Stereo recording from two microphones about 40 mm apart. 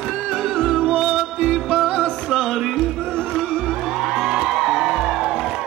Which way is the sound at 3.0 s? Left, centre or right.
Centre.